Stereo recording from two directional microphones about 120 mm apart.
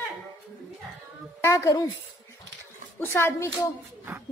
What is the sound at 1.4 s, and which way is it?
Speech, 25° left (ahead or behind).